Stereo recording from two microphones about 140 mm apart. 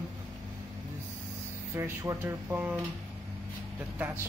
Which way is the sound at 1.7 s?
20° right (ahead or behind).